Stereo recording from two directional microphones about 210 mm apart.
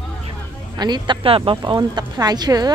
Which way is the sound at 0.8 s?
20° right (ahead or behind).